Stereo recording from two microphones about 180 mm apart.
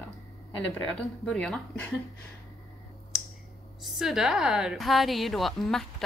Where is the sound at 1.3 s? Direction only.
5° left (ahead or behind).